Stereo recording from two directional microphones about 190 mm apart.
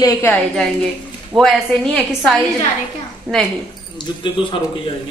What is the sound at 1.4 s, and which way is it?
A woman's voice, centre (ahead or behind).